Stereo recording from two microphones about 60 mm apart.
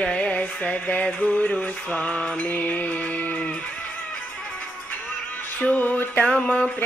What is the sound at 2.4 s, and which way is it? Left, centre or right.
Music, left.